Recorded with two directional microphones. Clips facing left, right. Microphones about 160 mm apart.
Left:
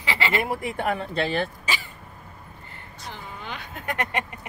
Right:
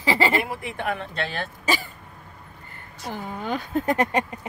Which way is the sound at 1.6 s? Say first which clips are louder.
Right 6 dB; 45° right (ahead or behind).